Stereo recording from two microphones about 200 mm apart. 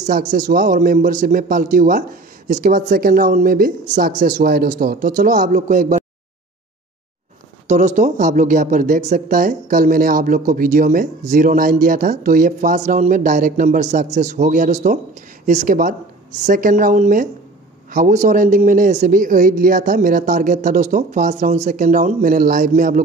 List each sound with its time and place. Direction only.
0.0 s a man's voice: 40° right (ahead or behind)
7.6 s a man's voice: 35° right (ahead or behind)